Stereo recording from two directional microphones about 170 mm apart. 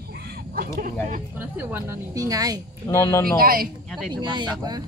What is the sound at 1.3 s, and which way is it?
Speech, 10° right (ahead or behind).